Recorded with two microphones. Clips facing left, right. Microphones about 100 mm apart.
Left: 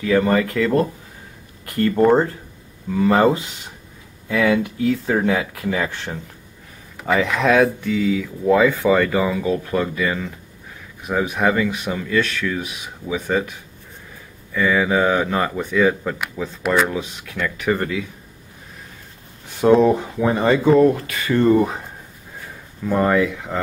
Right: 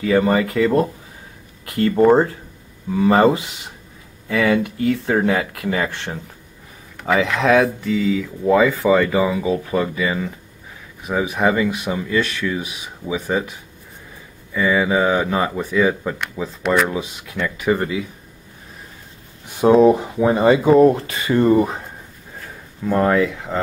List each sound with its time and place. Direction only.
0.0 s speech: 10° right (ahead or behind)
19.6 s speech: 10° right (ahead or behind)
21.5 s speech: 5° right (ahead or behind)